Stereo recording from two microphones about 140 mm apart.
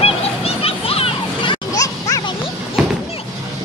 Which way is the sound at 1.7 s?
25° left (ahead or behind).